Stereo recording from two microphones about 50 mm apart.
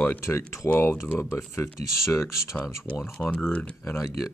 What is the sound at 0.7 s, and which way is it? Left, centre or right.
Speech, left.